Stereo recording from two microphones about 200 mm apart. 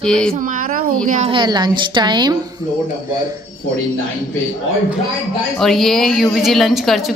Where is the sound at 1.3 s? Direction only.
20° right (ahead or behind).